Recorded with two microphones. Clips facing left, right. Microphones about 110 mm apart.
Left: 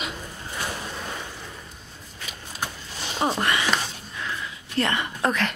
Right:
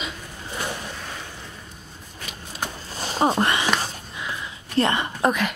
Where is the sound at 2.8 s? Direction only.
40° right (ahead or behind).